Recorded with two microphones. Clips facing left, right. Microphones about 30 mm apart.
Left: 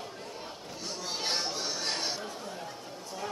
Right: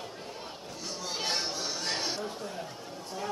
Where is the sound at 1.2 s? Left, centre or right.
Centre.